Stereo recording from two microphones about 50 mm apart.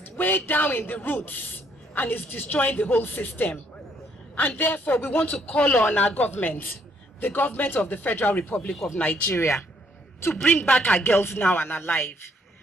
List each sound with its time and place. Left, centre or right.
0.0 s a man's voice: left
5.3 s a man's voice: left
8.9 s speech: left
9.3 s speech: left
10.4 s speech: left